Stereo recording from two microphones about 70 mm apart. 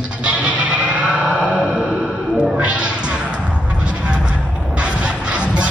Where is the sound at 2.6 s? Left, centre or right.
Centre.